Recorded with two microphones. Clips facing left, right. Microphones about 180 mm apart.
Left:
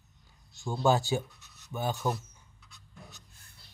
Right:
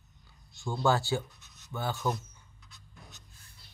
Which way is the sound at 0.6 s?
15° left (ahead or behind).